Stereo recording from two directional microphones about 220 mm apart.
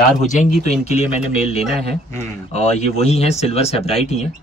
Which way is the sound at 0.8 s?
30° left (ahead or behind).